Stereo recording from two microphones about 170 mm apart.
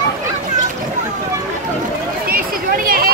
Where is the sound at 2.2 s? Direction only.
55° right (ahead or behind).